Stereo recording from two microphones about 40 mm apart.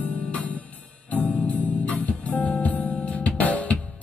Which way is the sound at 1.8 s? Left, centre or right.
Left.